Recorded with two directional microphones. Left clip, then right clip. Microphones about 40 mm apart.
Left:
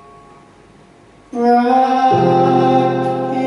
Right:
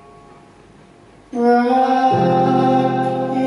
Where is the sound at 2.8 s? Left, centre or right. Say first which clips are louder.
Left 2 dB; right.